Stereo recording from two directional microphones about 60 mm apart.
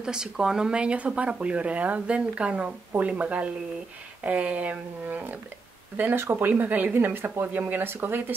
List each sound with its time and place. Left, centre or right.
0.0 s speech: centre; by 8.4 s right